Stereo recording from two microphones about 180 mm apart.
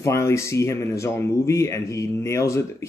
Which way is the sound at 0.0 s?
15° left (ahead or behind).